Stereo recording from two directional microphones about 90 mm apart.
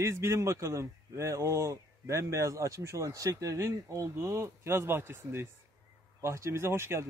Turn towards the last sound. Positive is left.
turn(degrees=-30)  # may be behind; listen again after turning